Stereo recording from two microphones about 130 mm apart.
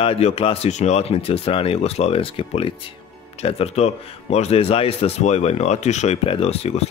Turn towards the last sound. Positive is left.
turn(degrees=55)  # may be behind; listen again after turning